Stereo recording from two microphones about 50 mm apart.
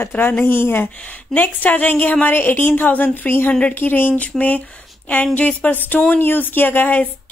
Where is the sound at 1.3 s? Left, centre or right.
Left.